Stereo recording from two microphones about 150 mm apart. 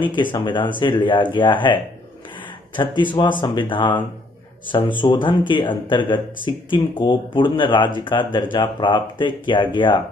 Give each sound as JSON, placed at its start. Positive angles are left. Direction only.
{"t": 0.1, "sound": "speech", "side_deg": 35}
{"t": 3.0, "sound": "speech", "side_deg": 30}